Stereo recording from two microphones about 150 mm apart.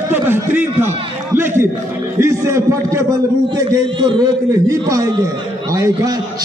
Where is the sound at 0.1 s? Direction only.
15° right (ahead or behind).